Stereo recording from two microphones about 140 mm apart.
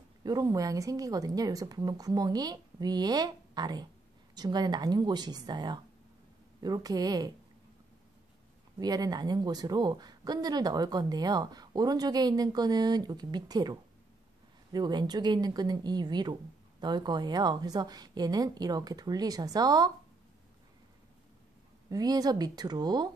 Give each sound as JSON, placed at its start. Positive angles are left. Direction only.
{"t": 0.2, "sound": "speech", "side_deg": -25}
{"t": 8.7, "sound": "speech", "side_deg": -25}
{"t": 21.8, "sound": "speech", "side_deg": -25}